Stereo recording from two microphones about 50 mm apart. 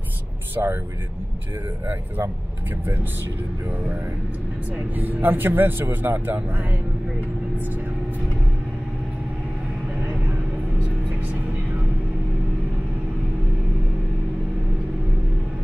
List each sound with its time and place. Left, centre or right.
0.6 s speech: right
4.7 s speech: right
9.9 s vehicle: right